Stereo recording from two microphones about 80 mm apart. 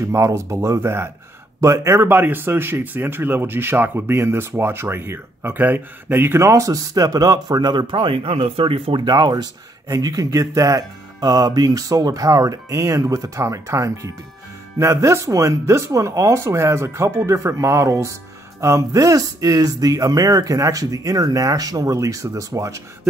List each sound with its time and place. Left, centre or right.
0.0 s speech: right
2.0 s speech: right
8.9 s speech: right